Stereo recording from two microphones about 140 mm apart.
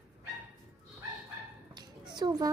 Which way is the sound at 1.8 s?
30° right (ahead or behind).